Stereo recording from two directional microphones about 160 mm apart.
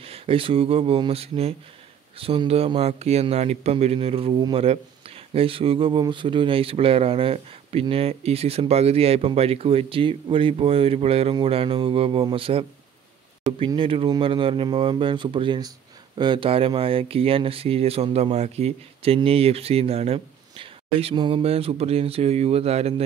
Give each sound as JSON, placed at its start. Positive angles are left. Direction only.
{"t": 0.0, "sound": "speech", "side_deg": -35}